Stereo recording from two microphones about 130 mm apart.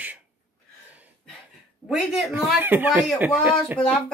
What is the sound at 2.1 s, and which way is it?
Speech, centre (ahead or behind).